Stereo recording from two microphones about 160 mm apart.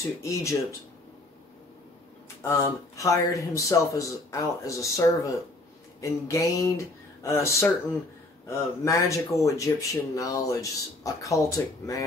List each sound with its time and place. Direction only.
0.0 s speech: 20° left (ahead or behind)
2.4 s speech: 20° left (ahead or behind)